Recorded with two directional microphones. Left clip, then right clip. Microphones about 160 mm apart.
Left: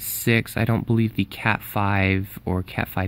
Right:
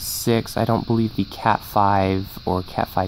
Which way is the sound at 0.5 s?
35° left (ahead or behind).